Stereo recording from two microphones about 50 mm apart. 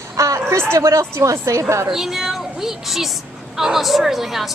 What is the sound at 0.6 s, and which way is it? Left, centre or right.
A woman's voice, right.